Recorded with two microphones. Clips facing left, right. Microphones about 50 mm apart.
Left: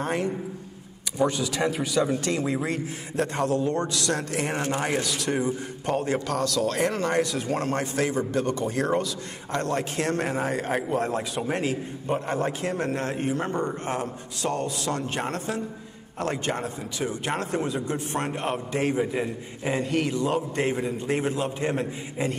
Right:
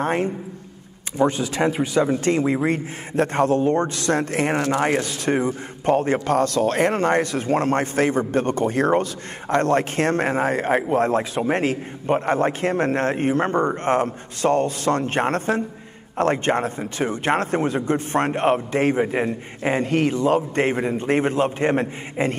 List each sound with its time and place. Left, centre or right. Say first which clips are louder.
0.0 s a man's voice: right 5 dB; right